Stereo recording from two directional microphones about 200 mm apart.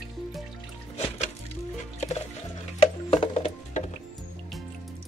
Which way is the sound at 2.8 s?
30° left (ahead or behind).